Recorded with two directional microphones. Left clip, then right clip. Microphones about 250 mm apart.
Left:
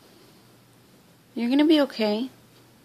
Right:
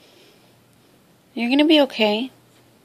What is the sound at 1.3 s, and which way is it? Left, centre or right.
Speech, centre.